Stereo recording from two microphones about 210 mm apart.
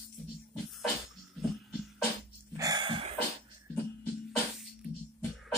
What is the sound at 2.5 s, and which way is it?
Throat clearing, 15° right (ahead or behind).